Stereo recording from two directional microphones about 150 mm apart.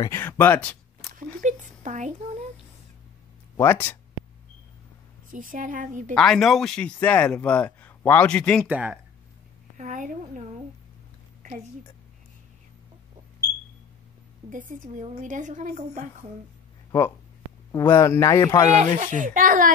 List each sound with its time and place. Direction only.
0.0 s a man's voice: 20° left (ahead or behind)
1.1 s a sound: 55° right (ahead or behind)
3.5 s a man's voice: 15° left (ahead or behind)
5.3 s a woman's voice: 65° right (ahead or behind)
6.1 s a man's voice: 5° left (ahead or behind)
8.6 s speech: 10° right (ahead or behind)
9.8 s a woman's voice: 60° right (ahead or behind)
14.5 s a woman's voice: 60° right (ahead or behind)
17.6 s speech: 20° left (ahead or behind)
18.8 s a woman's voice: 55° right (ahead or behind)